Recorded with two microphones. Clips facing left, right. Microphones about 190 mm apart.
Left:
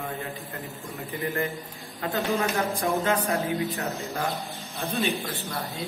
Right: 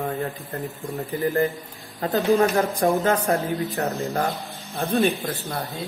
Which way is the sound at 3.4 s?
Centre (ahead or behind).